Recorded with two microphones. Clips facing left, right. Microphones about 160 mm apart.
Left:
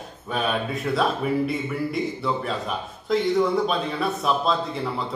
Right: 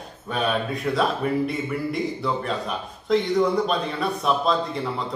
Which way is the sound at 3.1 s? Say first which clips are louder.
Right 1 dB; centre (ahead or behind).